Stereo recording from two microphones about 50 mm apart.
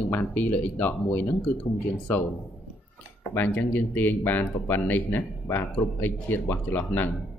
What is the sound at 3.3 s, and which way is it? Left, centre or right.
Speech, left.